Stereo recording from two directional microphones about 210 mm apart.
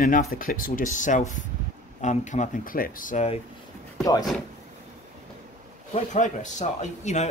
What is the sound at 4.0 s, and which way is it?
Speech, 20° left (ahead or behind).